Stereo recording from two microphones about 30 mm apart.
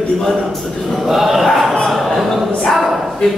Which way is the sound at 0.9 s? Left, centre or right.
Centre.